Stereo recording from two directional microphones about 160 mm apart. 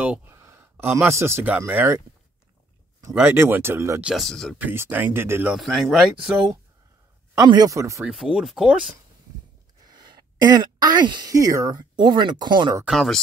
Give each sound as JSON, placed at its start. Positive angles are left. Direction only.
{"t": 0.0, "sound": "a sound", "side_deg": -10}
{"t": 1.0, "sound": "speech", "side_deg": -15}
{"t": 3.2, "sound": "speech", "side_deg": -15}
{"t": 4.0, "sound": "speech", "side_deg": 0}
{"t": 4.6, "sound": "speech", "side_deg": -10}
{"t": 5.6, "sound": "speech", "side_deg": 0}
{"t": 7.3, "sound": "speech", "side_deg": -25}
{"t": 8.0, "sound": "speech", "side_deg": -5}
{"t": 9.8, "sound": "speech", "side_deg": -25}
{"t": 12.8, "sound": "speech", "side_deg": 0}